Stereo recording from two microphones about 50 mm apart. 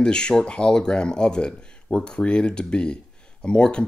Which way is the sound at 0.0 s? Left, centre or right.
Centre.